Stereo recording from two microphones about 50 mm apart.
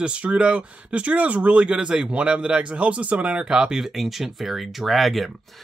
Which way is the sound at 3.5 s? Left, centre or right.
Centre.